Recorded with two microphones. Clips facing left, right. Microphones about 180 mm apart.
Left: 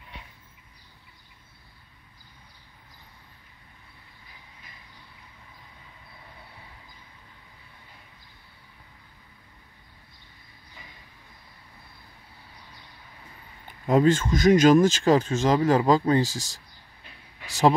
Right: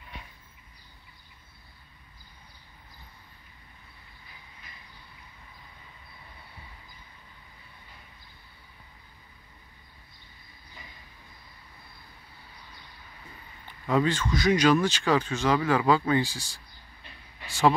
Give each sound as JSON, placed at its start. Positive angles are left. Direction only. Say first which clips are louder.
{"t": 13.7, "sound": "speech", "louder": "left 6 dB", "side_deg": 45}